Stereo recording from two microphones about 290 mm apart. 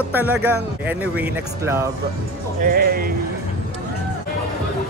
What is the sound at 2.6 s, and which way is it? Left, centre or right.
Speech, right.